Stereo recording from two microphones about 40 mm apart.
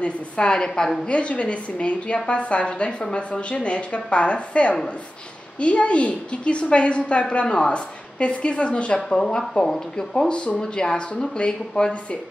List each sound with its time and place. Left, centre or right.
0.0 s a woman's voice: left
1.0 s a woman's voice: left
9.2 s a woman's voice: centre; by 12.2 s left